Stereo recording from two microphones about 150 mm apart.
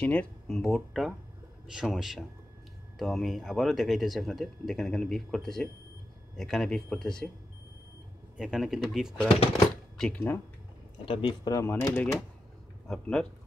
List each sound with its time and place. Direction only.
0.0 s speech: 10° left (ahead or behind)
8.4 s speech: centre (ahead or behind)
11.1 s speech: 35° left (ahead or behind)
11.5 s speech: 15° left (ahead or behind)